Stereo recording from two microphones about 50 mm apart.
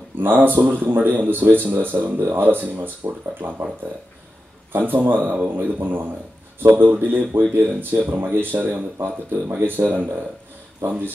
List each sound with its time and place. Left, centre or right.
0.2 s speech: right
4.7 s speech: right
10.8 s speech: right